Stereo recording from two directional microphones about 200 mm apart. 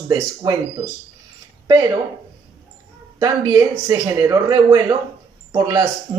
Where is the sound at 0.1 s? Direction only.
20° right (ahead or behind).